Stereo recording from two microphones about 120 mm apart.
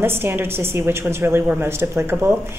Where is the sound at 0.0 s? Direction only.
20° right (ahead or behind).